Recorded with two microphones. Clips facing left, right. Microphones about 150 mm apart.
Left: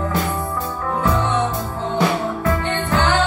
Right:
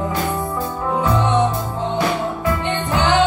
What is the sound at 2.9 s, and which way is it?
Music, 15° right (ahead or behind).